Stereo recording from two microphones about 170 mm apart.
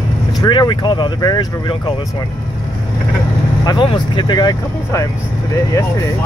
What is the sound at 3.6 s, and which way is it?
Speech, 30° left (ahead or behind).